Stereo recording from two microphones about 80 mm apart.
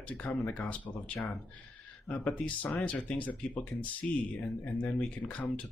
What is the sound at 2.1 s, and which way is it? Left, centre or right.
Speech, centre.